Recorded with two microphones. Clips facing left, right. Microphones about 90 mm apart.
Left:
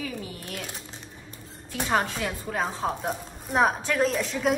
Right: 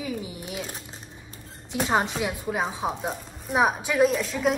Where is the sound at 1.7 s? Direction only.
20° right (ahead or behind).